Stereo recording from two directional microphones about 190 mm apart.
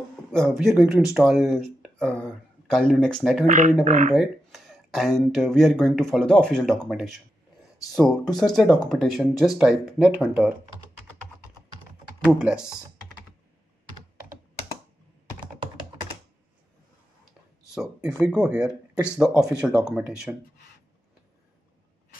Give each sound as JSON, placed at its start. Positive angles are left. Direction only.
{"t": 0.3, "sound": "speech", "side_deg": 0}
{"t": 3.4, "sound": "speech", "side_deg": -45}
{"t": 4.1, "sound": "speech", "side_deg": 0}
{"t": 12.3, "sound": "speech", "side_deg": -5}
{"t": 18.2, "sound": "speech", "side_deg": -10}
{"t": 19.5, "sound": "speech", "side_deg": -20}
{"t": 19.9, "sound": "speech", "side_deg": -5}